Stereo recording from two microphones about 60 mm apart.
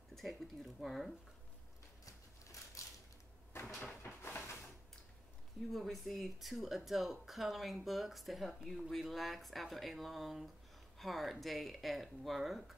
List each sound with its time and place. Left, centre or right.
0.1 s speech: centre
4.0 s a sound: left
5.7 s speech: centre